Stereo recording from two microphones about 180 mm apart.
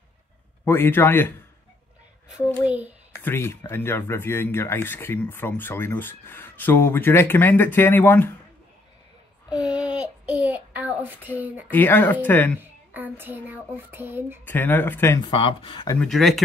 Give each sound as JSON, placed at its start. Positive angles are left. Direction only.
{"t": 0.7, "sound": "speech", "side_deg": 10}
{"t": 2.6, "sound": "child singing", "side_deg": -10}
{"t": 3.2, "sound": "speech", "side_deg": 10}
{"t": 9.5, "sound": "a sound", "side_deg": -5}
{"t": 11.7, "sound": "speech", "side_deg": 10}
{"t": 12.5, "sound": "child singing", "side_deg": -10}
{"t": 14.4, "sound": "speech", "side_deg": 10}
{"t": 15.2, "sound": "speech", "side_deg": 30}
{"t": 16.0, "sound": "speech", "side_deg": 0}